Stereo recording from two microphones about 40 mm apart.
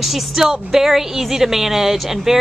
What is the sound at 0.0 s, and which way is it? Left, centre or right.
A woman's voice, centre.